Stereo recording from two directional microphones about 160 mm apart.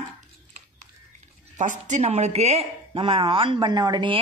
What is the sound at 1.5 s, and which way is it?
Speech, 50° right (ahead or behind).